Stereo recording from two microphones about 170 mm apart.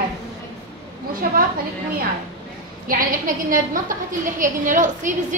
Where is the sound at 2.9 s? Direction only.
55° right (ahead or behind).